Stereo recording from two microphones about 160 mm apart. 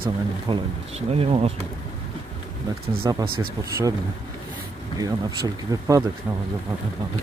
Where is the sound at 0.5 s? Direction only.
40° right (ahead or behind).